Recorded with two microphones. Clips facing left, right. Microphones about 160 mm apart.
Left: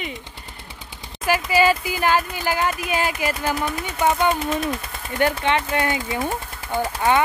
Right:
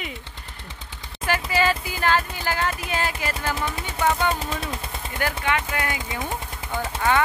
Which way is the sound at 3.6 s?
25° right (ahead or behind).